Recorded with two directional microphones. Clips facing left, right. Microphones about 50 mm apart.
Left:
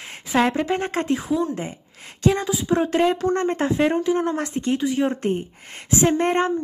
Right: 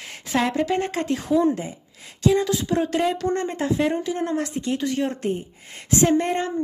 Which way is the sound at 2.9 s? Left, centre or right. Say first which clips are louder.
Left 3 dB; left.